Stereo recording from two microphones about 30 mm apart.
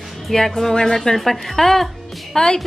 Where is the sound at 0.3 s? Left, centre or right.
Centre.